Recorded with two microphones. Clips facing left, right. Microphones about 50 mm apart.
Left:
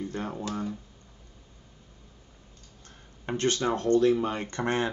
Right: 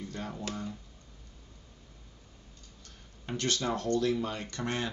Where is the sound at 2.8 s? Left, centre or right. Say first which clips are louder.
Left 4 dB; left.